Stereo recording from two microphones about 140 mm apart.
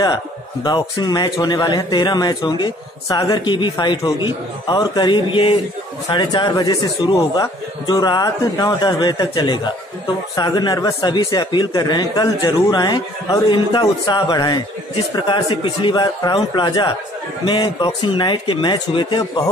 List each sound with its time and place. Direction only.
0.7 s a man's voice: 30° left (ahead or behind)